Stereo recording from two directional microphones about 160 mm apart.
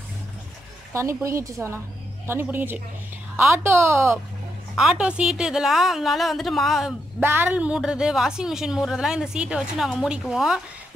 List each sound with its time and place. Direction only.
0.9 s a woman's voice: 20° right (ahead or behind)
4.7 s a woman's voice: 5° right (ahead or behind)
7.2 s a woman's voice: 15° right (ahead or behind)